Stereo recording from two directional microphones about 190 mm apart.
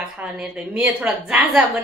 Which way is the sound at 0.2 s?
5° right (ahead or behind).